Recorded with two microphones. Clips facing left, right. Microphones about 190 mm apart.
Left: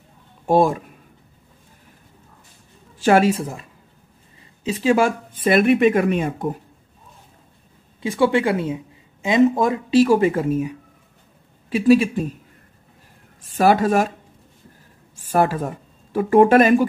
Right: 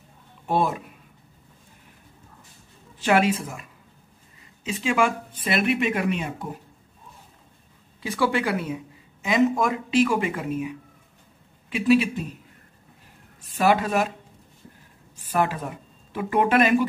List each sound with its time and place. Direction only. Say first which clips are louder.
0.5 s speech: left 7 dB; 45° left (ahead or behind)
3.0 s speech: left 5 dB; 40° left (ahead or behind)
4.6 s speech: left 6 dB; 40° left (ahead or behind)
8.0 s a woman's voice: left 6 dB; 25° left (ahead or behind); by 12.4 s 45° left (ahead or behind)
13.6 s speech: left 5 dB; 45° left (ahead or behind)
15.3 s speech: left 5 dB; 40° left (ahead or behind)